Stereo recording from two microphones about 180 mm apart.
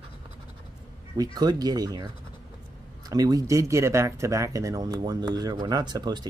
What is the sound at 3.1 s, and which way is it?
Speech, 20° right (ahead or behind).